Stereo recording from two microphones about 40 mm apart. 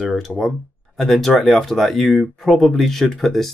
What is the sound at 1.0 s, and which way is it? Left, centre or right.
Speech, centre.